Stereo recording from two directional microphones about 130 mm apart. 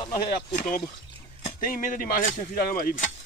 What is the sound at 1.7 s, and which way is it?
Speech, 90° left.